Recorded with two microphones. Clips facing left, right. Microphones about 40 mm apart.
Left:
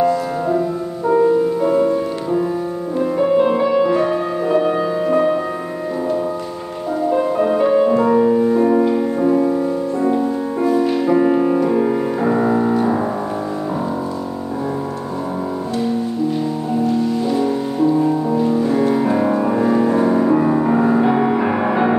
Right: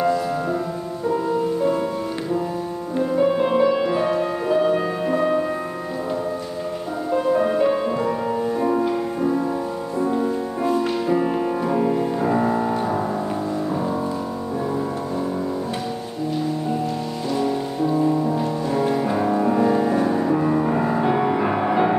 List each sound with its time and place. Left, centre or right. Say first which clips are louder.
0.0 s music: left 4 dB; centre
1.0 s music: left 8 dB; left
1.7 s music: left 7 dB; centre
7.1 s music: left 2 dB; centre
8.0 s music: left 8 dB; centre
17.3 s music: left 4 dB; centre